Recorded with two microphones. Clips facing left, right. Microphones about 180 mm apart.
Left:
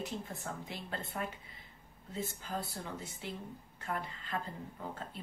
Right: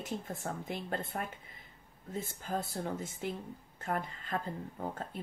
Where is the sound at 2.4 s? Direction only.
50° right (ahead or behind).